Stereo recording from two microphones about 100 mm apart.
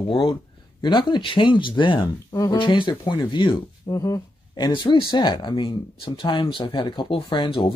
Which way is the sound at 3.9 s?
35° left (ahead or behind).